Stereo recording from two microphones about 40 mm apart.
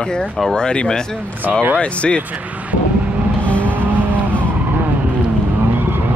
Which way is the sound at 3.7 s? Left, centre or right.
Right.